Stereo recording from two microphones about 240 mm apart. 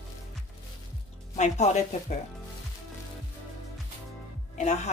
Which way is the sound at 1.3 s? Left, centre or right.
Left.